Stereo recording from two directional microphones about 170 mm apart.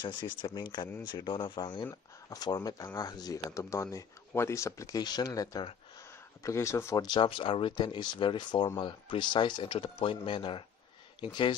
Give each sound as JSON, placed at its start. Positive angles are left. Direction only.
{"t": 0.0, "sound": "speech", "side_deg": 25}
{"t": 7.1, "sound": "speech", "side_deg": 30}